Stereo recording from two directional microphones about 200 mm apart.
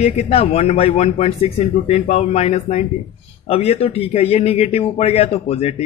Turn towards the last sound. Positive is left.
turn(degrees=30)  # may be behind; listen again after turning